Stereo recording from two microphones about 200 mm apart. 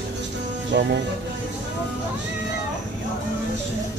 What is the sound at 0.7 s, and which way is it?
Speech, 60° right (ahead or behind).